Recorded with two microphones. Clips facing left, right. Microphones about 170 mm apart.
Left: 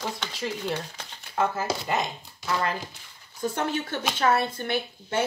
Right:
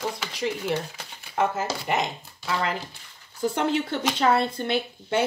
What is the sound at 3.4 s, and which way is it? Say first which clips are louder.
Speech: right 4 dB; 25° right (ahead or behind).